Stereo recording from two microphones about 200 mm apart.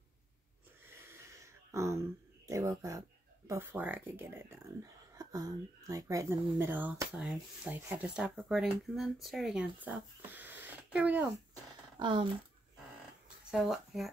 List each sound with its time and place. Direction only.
0.8 s a sound: 10° right (ahead or behind)
2.4 s speech: 15° right (ahead or behind)
12.0 s speech: 25° right (ahead or behind)
13.5 s speech: centre (ahead or behind)